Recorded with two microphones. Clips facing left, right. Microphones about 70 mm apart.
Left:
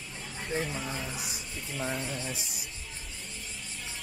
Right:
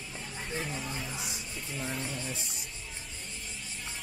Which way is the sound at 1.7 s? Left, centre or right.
Centre.